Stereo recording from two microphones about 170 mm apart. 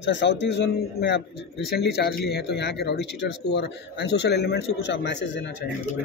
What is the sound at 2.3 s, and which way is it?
A man's voice, 80° left.